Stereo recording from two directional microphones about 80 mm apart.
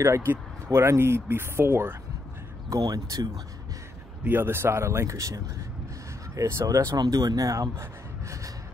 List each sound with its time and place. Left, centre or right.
0.0 s speech: right
2.8 s speech: right
4.2 s speech: right
7.0 s speech: right